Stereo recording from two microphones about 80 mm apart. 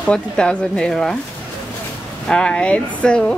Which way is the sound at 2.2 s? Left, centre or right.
Centre.